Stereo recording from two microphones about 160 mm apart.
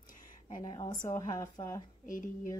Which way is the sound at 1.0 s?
20° left (ahead or behind).